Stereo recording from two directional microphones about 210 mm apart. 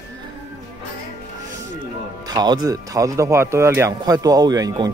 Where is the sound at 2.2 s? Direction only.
20° right (ahead or behind).